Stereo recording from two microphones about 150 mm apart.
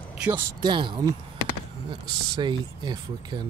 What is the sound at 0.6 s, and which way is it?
Speech, 30° right (ahead or behind).